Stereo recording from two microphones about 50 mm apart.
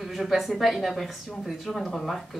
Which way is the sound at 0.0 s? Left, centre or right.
Centre.